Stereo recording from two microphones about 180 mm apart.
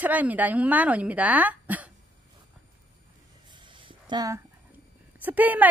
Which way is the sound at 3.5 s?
25° right (ahead or behind).